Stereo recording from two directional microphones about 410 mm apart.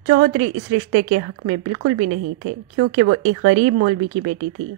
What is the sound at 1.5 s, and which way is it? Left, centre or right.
A woman's voice, right.